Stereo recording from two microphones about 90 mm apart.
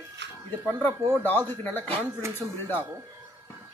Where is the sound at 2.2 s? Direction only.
30° right (ahead or behind).